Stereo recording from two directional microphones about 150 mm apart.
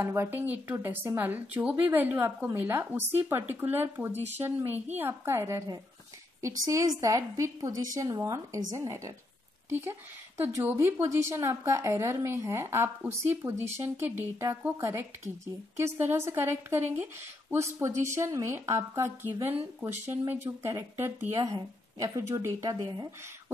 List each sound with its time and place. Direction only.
0.0 s a woman's voice: 15° right (ahead or behind)